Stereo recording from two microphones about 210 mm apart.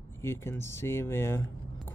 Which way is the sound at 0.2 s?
10° left (ahead or behind).